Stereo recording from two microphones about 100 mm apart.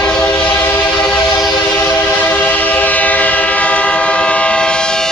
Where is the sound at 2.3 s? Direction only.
15° left (ahead or behind).